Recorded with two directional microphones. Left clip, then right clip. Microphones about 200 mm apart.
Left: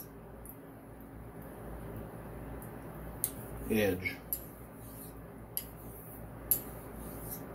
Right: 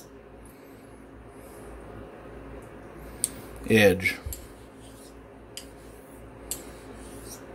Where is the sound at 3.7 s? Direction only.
50° right (ahead or behind).